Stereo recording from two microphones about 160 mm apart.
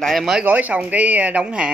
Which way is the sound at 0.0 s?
Centre (ahead or behind).